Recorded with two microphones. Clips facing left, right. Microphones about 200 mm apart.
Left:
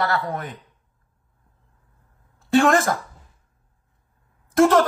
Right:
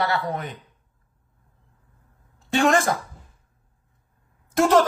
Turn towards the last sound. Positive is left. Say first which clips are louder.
# left 2 dB
turn(degrees=0)  # may be behind; listen again after turning